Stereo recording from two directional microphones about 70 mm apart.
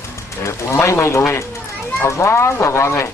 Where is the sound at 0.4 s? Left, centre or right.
Left.